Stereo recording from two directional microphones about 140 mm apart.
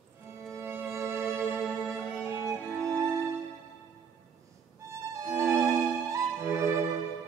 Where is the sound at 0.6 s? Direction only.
15° right (ahead or behind).